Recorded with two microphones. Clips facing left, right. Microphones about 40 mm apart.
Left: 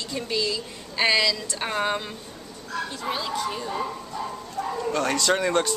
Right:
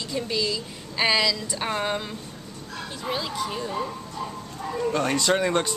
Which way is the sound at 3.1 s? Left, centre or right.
Centre.